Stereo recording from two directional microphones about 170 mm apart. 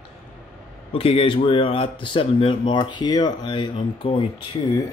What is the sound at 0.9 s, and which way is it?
Speech, 35° left (ahead or behind).